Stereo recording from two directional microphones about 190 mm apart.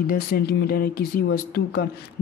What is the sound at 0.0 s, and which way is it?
Speech, 55° left (ahead or behind).